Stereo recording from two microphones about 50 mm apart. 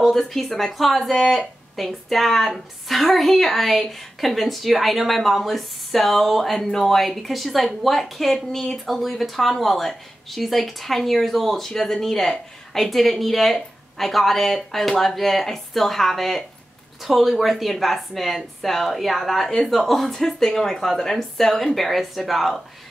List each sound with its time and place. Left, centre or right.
0.0 s a woman's voice: centre